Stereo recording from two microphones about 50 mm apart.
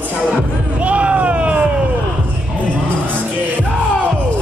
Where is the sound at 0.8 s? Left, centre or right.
Right.